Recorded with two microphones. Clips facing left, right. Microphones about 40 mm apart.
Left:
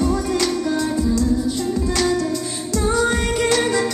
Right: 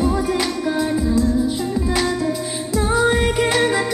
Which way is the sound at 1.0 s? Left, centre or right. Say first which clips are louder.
Right 1 dB; centre.